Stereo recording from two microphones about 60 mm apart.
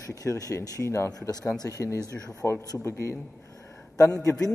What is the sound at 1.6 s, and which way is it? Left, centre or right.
Speech, left.